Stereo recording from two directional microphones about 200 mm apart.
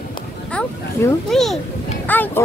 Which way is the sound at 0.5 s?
5° left (ahead or behind).